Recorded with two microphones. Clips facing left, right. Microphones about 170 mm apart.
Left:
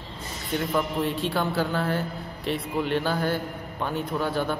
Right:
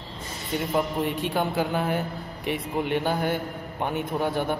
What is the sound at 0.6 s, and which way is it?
A man's voice, 15° right (ahead or behind).